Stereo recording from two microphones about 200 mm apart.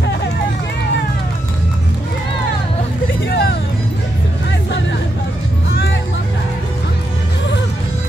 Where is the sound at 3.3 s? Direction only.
50° left (ahead or behind).